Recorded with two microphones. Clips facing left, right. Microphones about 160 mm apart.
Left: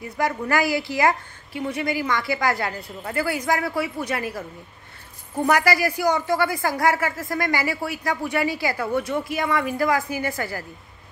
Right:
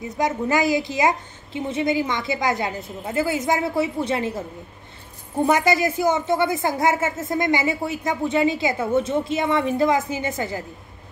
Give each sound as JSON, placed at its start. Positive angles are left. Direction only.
{"t": 0.2, "sound": "a man's voice", "side_deg": -20}